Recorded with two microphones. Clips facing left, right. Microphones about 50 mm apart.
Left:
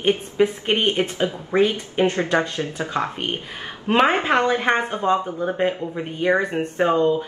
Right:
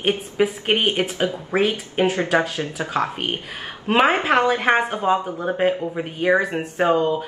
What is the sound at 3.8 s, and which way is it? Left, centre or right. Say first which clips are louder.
Speech: even; centre.